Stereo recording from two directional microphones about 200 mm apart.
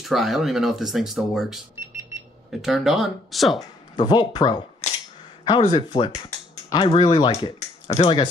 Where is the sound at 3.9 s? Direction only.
20° left (ahead or behind).